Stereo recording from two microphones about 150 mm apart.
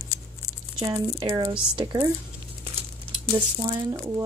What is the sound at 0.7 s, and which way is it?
Speech, 25° right (ahead or behind).